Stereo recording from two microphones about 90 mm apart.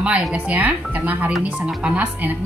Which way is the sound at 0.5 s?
20° right (ahead or behind).